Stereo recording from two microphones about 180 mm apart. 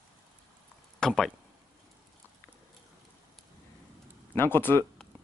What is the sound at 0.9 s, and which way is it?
Speech, 5° left (ahead or behind).